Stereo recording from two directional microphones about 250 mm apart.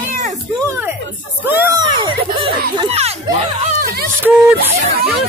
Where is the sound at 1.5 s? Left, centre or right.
Centre.